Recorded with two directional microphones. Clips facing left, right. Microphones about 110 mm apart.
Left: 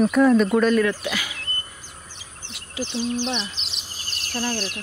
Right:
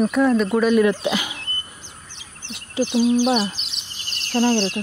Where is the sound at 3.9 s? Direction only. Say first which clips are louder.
Even; 40° left (ahead or behind).